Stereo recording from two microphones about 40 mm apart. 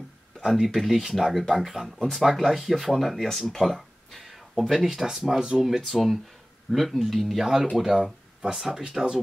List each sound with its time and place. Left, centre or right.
0.4 s speech: centre
5.6 s speech: centre
8.8 s speech: centre